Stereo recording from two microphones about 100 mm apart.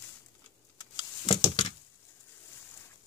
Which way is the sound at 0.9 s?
45° left (ahead or behind).